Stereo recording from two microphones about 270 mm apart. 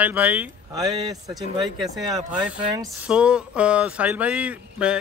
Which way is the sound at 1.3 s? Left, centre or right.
Centre.